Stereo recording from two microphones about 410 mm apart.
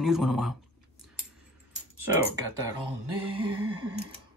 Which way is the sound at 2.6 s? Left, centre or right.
Right.